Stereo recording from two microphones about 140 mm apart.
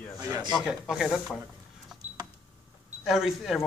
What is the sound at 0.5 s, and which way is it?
Speech, 5° right (ahead or behind).